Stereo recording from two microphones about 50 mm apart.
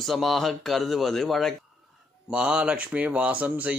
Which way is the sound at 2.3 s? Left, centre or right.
Centre.